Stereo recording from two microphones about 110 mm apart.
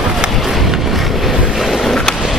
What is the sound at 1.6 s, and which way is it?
Vehicle, centre (ahead or behind).